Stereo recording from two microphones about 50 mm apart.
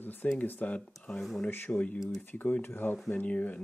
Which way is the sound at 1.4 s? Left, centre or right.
Left.